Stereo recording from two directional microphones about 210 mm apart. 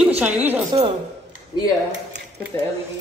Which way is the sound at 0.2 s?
10° right (ahead or behind).